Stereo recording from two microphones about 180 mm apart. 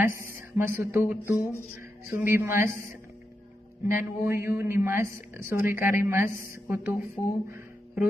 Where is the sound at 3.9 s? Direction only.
15° right (ahead or behind).